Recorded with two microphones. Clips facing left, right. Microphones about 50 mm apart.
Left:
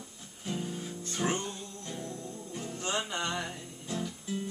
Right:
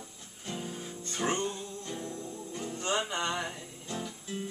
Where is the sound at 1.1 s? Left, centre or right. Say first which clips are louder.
Right 1 dB; centre.